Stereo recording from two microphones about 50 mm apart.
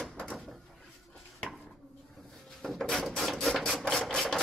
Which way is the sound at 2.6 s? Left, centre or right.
Centre.